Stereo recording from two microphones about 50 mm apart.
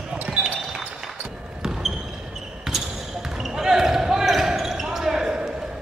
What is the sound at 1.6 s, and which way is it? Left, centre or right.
Basketball bounce, centre.